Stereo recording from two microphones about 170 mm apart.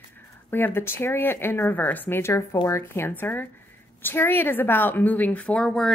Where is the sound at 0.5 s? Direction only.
10° left (ahead or behind).